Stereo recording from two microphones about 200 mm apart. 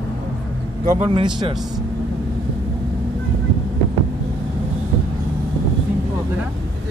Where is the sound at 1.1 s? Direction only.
25° right (ahead or behind).